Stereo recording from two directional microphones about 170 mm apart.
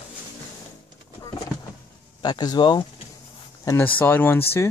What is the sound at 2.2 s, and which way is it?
Speech, 25° left (ahead or behind).